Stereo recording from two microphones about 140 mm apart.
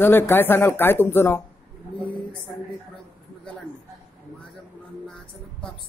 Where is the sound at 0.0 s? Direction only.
15° left (ahead or behind).